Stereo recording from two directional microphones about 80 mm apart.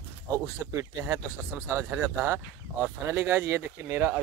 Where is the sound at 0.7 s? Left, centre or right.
Right.